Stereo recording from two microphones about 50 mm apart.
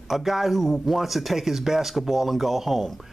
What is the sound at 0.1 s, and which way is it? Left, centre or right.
Speech, centre.